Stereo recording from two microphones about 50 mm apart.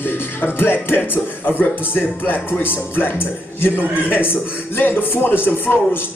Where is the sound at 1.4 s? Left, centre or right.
Left.